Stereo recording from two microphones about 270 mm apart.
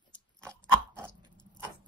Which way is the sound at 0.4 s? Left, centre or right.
Centre.